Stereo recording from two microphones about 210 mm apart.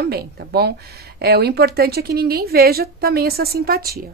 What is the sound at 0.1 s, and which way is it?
A woman's voice, 50° right (ahead or behind).